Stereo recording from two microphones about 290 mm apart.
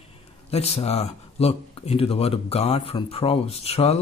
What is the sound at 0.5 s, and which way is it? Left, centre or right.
Speech, left.